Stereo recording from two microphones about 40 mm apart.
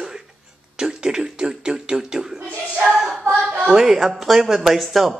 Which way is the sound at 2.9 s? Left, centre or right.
Centre.